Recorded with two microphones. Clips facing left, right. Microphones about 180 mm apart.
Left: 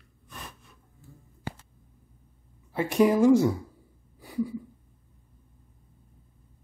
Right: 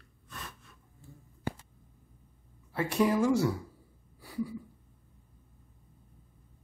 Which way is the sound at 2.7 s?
15° left (ahead or behind).